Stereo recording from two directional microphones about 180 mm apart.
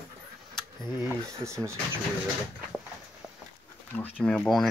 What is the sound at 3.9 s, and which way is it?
Speech, 5° left (ahead or behind).